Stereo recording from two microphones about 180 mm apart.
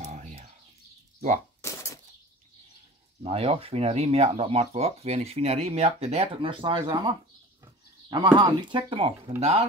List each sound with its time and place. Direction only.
0.0 s bird: 40° right (ahead or behind)
1.6 s a sound: 15° left (ahead or behind)
3.2 s speech: 35° right (ahead or behind)